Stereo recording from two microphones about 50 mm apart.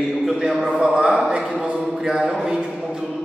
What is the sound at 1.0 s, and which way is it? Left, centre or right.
A man's voice, centre.